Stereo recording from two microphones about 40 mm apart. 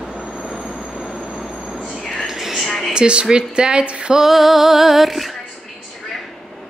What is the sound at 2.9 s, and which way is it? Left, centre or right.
Speech, right.